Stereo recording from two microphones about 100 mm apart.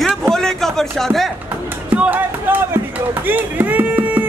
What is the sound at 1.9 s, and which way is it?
Speech, 15° right (ahead or behind).